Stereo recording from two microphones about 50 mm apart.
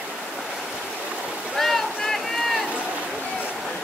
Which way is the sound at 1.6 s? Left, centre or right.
Centre.